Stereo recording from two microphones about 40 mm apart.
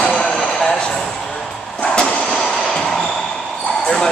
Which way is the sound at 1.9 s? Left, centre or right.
Left.